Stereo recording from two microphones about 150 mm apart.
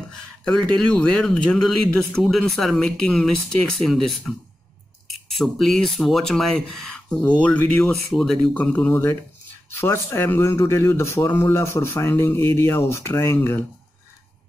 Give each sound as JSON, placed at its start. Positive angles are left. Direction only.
{"t": 0.5, "sound": "speech", "side_deg": 5}
{"t": 5.3, "sound": "a man's voice", "side_deg": 0}